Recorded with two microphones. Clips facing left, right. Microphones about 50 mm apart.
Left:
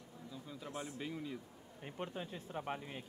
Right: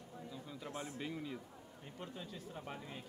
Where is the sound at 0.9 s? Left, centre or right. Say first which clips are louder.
Even; centre.